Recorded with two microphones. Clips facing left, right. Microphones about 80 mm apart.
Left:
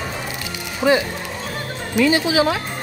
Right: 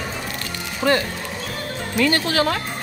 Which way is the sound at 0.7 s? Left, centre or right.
Centre.